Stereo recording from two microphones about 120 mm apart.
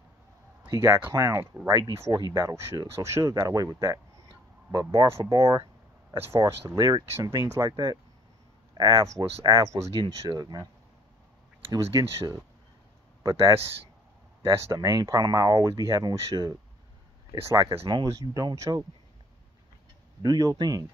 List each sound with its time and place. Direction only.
0.7 s speech: 20° right (ahead or behind)
1.7 s speech: 30° right (ahead or behind)
7.1 s speech: 20° right (ahead or behind)
9.9 s speech: 40° right (ahead or behind)
11.7 s speech: 35° right (ahead or behind)
14.4 s speech: 30° right (ahead or behind)
20.2 s speech: 30° right (ahead or behind)